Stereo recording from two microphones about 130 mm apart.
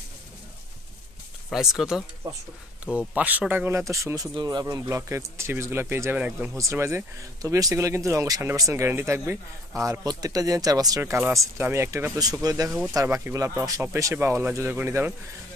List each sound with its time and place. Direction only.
1.5 s speech: 5° right (ahead or behind); by 12.6 s 30° right (ahead or behind)
12.6 s speech: 5° right (ahead or behind)
12.9 s speech: 20° right (ahead or behind)